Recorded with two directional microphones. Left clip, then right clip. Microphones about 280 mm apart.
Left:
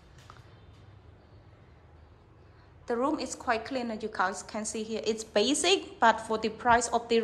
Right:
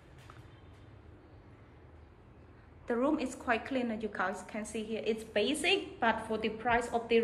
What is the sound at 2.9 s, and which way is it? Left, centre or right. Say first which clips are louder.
A woman's voice: left 2 dB; centre.